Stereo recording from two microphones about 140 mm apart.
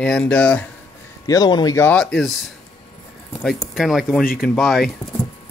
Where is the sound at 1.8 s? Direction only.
10° left (ahead or behind).